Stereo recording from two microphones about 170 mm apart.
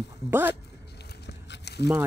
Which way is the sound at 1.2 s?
80° left.